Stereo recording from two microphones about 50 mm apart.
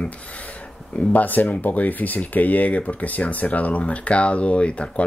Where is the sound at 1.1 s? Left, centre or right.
Left.